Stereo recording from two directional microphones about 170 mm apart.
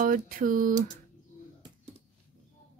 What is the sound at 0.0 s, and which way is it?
Speech, 55° right (ahead or behind).